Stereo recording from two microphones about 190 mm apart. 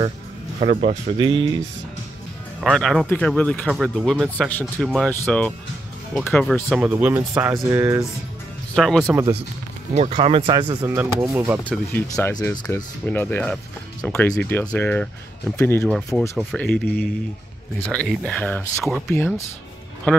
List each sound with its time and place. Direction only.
0.6 s speech: 35° right (ahead or behind)
2.6 s speech: centre (ahead or behind)
6.7 s speech: 5° right (ahead or behind)
8.7 s speech: centre (ahead or behind)
9.0 s speech: 15° right (ahead or behind)
9.9 s speech: 35° right (ahead or behind)
11.0 s speech: 10° right (ahead or behind)
11.6 s speech: 10° left (ahead or behind)